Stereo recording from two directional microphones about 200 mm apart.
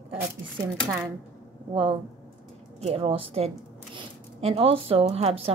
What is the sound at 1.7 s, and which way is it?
A woman's voice, 25° right (ahead or behind).